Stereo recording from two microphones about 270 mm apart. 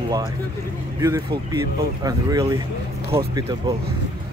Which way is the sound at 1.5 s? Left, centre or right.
Centre.